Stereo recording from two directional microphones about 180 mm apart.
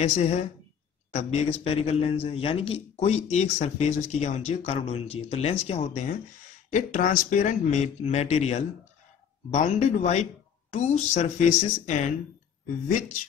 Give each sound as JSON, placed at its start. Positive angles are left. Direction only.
{"t": 0.0, "sound": "a man's voice", "side_deg": 40}